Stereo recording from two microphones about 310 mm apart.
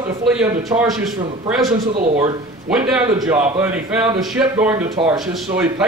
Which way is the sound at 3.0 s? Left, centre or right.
Centre.